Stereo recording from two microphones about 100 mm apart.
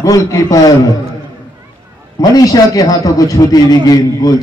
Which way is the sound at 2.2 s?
40° left (ahead or behind).